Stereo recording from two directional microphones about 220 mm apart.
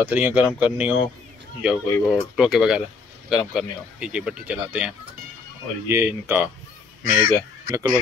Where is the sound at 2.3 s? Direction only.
5° right (ahead or behind).